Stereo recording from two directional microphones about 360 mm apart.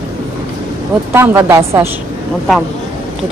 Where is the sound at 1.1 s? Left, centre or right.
Centre.